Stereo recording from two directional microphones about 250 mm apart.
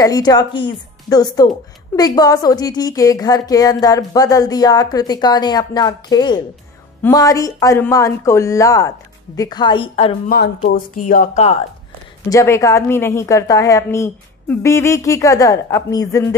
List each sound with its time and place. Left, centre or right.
0.0 s a woman's voice: centre
10.3 s speech: left
12.3 s speech: centre